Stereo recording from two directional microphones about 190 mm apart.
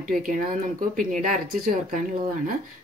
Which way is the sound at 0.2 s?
45° right (ahead or behind).